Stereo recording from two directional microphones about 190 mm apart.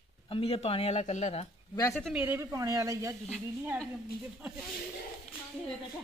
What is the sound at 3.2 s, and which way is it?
Speech, 5° right (ahead or behind).